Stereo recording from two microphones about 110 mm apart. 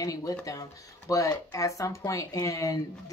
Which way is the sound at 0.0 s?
30° left (ahead or behind).